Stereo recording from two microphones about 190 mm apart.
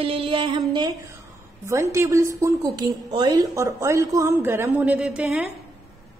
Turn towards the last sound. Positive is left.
turn(degrees=-5)  # may be behind; listen again after turning